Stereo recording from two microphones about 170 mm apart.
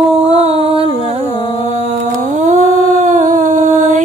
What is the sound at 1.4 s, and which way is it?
Music, 35° left (ahead or behind).